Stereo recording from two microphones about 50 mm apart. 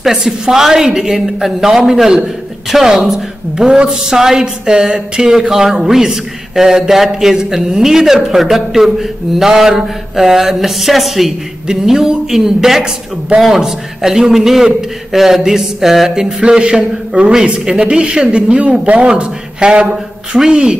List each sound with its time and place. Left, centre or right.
0.0 s a man's voice: centre
16.3 s a man's voice: centre